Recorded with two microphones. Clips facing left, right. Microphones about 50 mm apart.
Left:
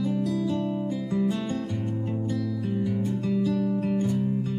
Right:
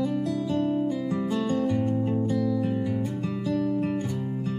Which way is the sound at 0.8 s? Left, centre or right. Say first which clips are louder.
Right 2 dB; right.